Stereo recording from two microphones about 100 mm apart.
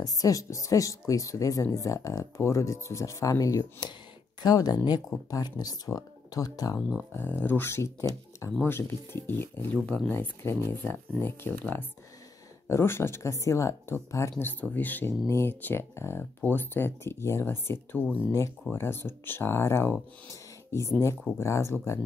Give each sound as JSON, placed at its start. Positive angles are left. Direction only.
{"t": 0.0, "sound": "speech", "side_deg": 35}
{"t": 7.2, "sound": "speech", "side_deg": 20}
{"t": 9.8, "sound": "speech", "side_deg": 10}
{"t": 10.1, "sound": "speech", "side_deg": 25}
{"t": 21.4, "sound": "speech", "side_deg": 30}